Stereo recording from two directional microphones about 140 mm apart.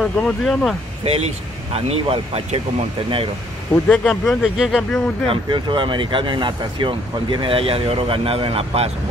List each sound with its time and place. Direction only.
0.0 s speech: 5° left (ahead or behind)
1.0 s speech: 45° right (ahead or behind)
3.7 s speech: 10° left (ahead or behind)
5.3 s speech: 35° right (ahead or behind)